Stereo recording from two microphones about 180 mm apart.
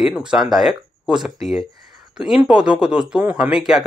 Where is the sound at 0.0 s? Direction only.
5° right (ahead or behind).